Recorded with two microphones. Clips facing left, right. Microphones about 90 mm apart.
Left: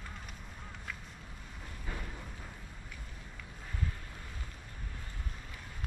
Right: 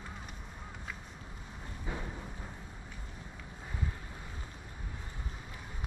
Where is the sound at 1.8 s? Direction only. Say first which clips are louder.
Right 3 dB; 15° right (ahead or behind).